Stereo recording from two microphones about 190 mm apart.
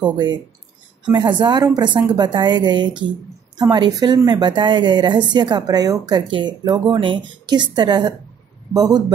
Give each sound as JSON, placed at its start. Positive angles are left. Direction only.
{"t": 0.0, "sound": "a woman's voice", "side_deg": -25}